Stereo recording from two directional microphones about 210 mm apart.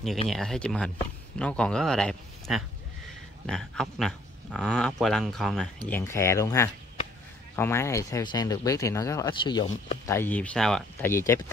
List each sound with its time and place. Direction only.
0.3 s speech: centre (ahead or behind)